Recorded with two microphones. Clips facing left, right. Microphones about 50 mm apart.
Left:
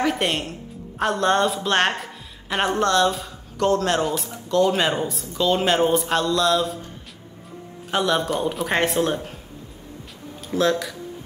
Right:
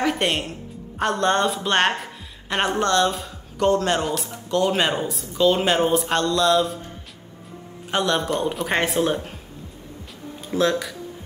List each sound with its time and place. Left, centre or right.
0.0 s a woman's voice: centre
4.5 s speech: centre
4.7 s speech: centre
7.9 s speech: centre
10.5 s speech: centre